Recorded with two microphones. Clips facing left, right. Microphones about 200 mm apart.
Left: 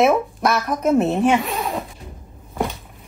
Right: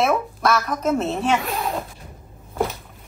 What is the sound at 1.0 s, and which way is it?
Speech, centre (ahead or behind).